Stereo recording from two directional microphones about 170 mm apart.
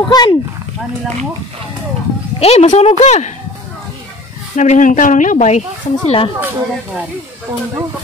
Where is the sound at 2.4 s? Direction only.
35° left (ahead or behind).